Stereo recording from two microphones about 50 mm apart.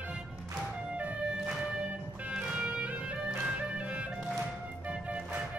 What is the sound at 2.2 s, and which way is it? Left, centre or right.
Music, right.